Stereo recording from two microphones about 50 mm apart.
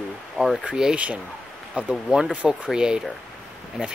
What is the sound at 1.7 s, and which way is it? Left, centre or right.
Speech, centre.